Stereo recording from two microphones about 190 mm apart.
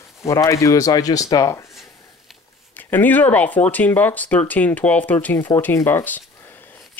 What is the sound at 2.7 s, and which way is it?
Speech, 10° left (ahead or behind).